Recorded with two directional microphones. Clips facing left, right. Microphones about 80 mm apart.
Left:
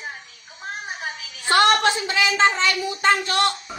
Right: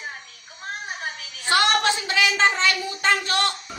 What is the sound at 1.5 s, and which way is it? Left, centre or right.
A woman's voice, left.